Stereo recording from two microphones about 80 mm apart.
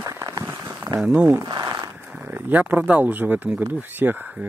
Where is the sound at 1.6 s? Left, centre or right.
Right.